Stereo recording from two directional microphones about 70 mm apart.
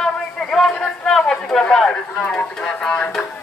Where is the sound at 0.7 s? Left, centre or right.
Centre.